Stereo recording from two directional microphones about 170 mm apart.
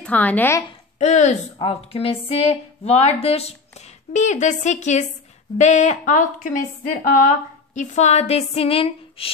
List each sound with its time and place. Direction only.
0.0 s speech: 10° left (ahead or behind)
0.9 s a woman's voice: 40° left (ahead or behind)